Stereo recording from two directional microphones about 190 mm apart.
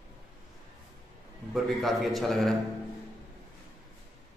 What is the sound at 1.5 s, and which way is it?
A man's voice, centre (ahead or behind).